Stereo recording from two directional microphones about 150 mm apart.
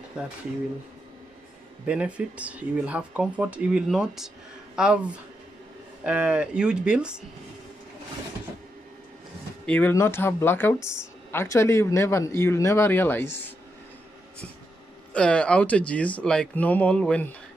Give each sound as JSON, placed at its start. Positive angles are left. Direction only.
{"t": 0.2, "sound": "speech", "side_deg": -5}
{"t": 1.9, "sound": "speech", "side_deg": -5}
{"t": 9.7, "sound": "speech", "side_deg": 10}
{"t": 15.1, "sound": "speech", "side_deg": 5}